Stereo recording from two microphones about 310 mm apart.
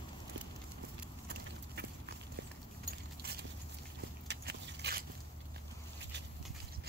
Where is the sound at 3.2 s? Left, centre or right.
Right.